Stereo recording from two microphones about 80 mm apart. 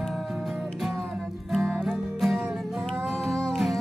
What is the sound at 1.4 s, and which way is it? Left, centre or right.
Music, centre.